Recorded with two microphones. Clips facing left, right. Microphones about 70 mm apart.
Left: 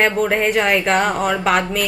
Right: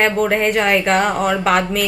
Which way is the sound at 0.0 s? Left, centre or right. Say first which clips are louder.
Right 1 dB; centre.